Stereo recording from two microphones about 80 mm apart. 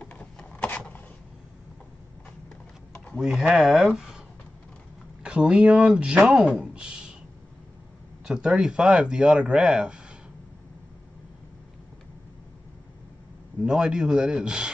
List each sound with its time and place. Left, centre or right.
0.0 s a sound: centre
3.2 s speech: centre
5.2 s speech: centre
8.3 s speech: centre
13.6 s speech: centre